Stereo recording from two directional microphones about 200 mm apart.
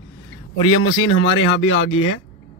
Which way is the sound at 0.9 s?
75° left (ahead or behind).